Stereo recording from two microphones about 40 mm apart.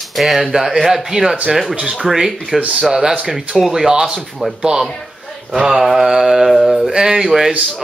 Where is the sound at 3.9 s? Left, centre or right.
Right.